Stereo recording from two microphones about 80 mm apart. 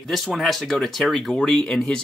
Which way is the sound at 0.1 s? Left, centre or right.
Centre.